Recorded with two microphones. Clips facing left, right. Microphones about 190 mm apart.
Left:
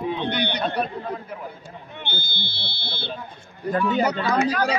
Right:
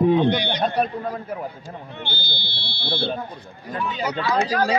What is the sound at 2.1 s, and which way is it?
Speech, 20° left (ahead or behind).